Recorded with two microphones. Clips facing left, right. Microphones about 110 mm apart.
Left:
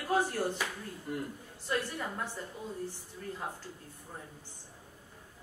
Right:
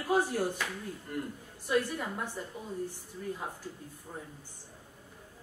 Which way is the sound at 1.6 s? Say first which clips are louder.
Right 4 dB; 15° right (ahead or behind).